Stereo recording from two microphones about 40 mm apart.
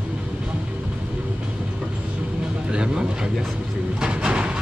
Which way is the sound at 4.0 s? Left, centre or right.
Right.